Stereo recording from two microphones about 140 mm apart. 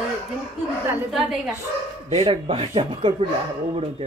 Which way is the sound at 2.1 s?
45° right (ahead or behind).